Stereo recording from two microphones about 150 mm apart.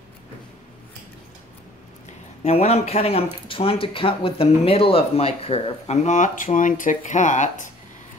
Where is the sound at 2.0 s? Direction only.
45° left (ahead or behind).